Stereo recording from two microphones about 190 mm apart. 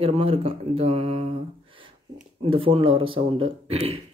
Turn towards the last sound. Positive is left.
turn(degrees=-30)  # may be behind; listen again after turning